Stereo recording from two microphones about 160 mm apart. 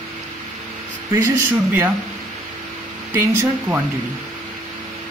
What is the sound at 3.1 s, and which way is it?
Speech, 15° right (ahead or behind).